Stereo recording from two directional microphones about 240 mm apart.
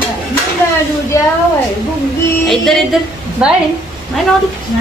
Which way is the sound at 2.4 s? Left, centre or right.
Centre.